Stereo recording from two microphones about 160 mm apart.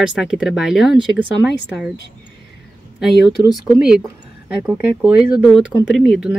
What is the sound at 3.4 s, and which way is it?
Speech, 15° right (ahead or behind).